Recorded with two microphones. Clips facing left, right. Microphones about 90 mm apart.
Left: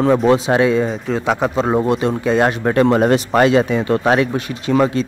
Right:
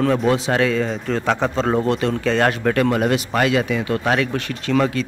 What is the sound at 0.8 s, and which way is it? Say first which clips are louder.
Speech: left 2 dB; 5° left (ahead or behind).